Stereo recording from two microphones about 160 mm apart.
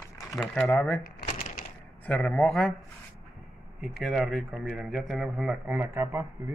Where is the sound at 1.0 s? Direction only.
65° left (ahead or behind).